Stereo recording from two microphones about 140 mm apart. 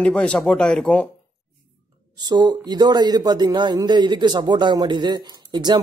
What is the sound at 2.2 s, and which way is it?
Speech, 30° right (ahead or behind).